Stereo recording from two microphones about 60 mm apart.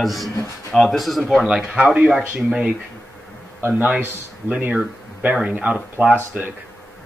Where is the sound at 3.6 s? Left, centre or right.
Right.